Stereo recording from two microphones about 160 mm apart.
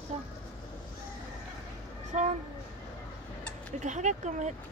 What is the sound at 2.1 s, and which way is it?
Speech, 45° right (ahead or behind).